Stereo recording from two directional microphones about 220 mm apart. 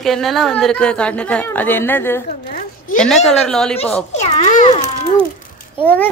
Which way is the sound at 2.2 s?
40° left (ahead or behind).